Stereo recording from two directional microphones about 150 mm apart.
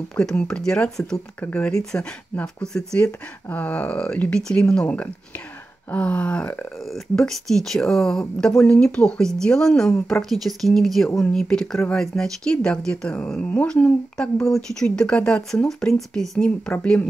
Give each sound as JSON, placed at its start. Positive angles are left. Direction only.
{"t": 0.1, "sound": "speech", "side_deg": 5}